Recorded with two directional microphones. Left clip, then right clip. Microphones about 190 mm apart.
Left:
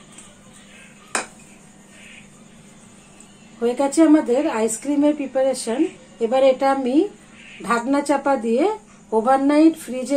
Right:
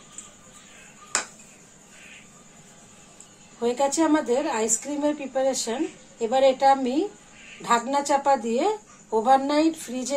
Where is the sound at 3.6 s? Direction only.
30° left (ahead or behind).